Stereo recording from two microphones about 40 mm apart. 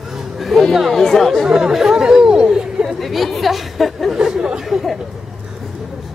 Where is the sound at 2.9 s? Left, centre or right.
Centre.